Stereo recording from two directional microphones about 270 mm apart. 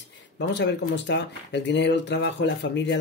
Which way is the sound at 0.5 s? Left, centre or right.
Left.